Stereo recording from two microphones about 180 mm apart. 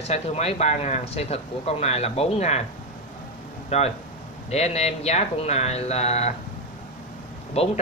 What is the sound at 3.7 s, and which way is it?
Speech, 35° left (ahead or behind).